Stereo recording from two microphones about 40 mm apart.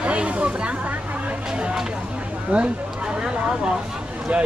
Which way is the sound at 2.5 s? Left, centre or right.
Right.